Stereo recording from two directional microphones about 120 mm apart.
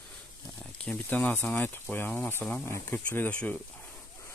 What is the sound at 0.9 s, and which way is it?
Speech, 10° left (ahead or behind).